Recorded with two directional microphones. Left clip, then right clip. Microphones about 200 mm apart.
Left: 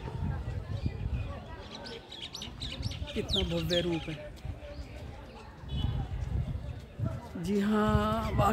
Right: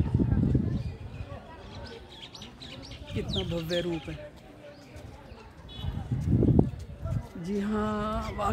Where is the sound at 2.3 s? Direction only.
45° left (ahead or behind).